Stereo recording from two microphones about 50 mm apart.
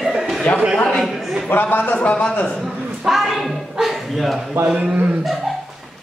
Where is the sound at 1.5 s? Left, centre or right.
Left.